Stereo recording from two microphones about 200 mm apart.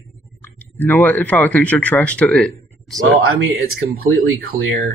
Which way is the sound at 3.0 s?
90° right.